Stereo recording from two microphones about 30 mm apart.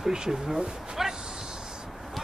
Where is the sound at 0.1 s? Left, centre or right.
Right.